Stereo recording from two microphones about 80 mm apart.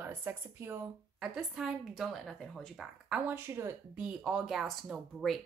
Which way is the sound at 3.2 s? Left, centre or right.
Right.